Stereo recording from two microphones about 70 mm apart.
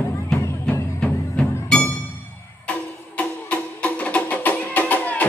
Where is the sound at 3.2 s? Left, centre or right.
Centre.